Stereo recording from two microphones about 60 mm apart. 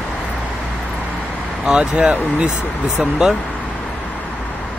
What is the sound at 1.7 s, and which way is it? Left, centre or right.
Speech, centre.